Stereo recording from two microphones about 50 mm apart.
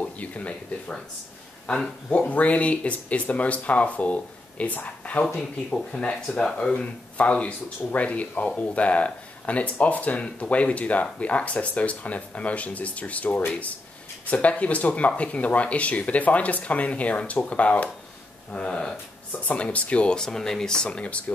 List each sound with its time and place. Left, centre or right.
0.0 s speech: left
2.0 s speech: left
5.2 s speech: centre